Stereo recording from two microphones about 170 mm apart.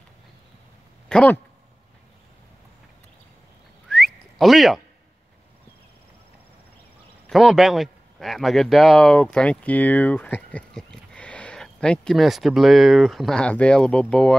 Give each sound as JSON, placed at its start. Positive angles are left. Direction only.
{"t": 1.0, "sound": "speech", "side_deg": 10}
{"t": 3.9, "sound": "whistling", "side_deg": 0}
{"t": 7.2, "sound": "speech", "side_deg": 0}